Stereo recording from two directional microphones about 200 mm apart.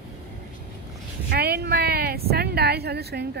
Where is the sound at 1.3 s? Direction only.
50° right (ahead or behind).